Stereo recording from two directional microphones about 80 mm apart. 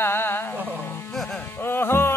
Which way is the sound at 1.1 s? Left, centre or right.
Centre.